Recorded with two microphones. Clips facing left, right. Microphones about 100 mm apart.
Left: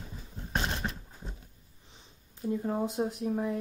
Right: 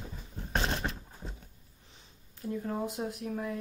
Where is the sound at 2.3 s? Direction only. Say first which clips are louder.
Left 3 dB; 20° left (ahead or behind).